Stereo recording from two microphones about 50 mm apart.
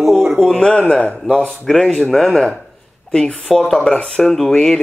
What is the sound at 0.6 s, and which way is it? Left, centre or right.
Speech, left.